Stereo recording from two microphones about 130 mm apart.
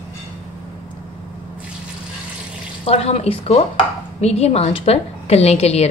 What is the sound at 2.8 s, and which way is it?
A woman's voice, 50° left (ahead or behind).